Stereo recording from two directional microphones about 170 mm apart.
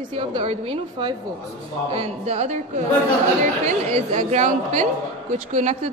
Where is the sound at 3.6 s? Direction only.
40° right (ahead or behind).